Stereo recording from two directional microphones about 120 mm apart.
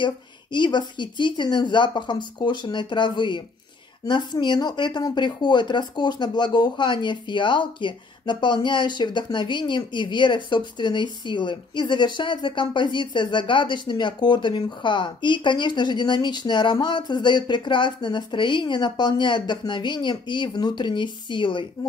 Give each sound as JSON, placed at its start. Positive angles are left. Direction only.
{"t": 0.0, "sound": "speech", "side_deg": 40}